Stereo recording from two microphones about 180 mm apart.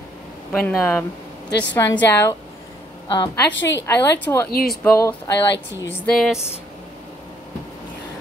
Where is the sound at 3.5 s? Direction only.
90° left.